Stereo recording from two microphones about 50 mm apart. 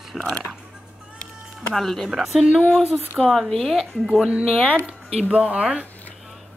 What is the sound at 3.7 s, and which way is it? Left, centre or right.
Speech, centre.